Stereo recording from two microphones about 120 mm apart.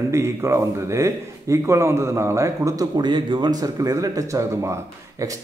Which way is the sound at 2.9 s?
40° right (ahead or behind).